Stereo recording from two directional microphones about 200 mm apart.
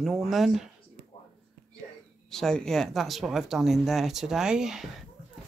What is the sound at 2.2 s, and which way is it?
Speech, centre (ahead or behind).